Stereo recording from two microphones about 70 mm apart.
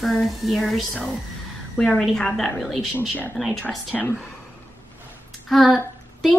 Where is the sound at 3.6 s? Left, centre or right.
Left.